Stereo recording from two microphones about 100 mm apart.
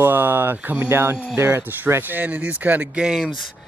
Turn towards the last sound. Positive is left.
turn(degrees=-10)  # may be behind; listen again after turning